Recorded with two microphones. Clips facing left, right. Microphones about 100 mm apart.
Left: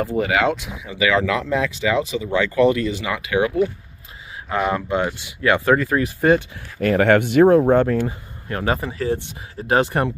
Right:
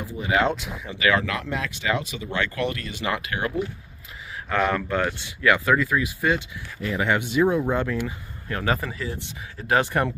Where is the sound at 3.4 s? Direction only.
90° left.